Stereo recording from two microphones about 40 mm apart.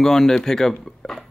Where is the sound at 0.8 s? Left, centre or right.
Centre.